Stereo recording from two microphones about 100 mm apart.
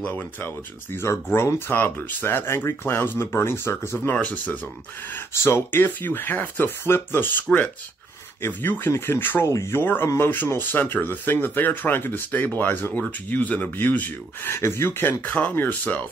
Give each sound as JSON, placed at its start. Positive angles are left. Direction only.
{"t": 0.9, "sound": "speech", "side_deg": 25}
{"t": 7.4, "sound": "speech", "side_deg": 10}
{"t": 8.4, "sound": "speech", "side_deg": 20}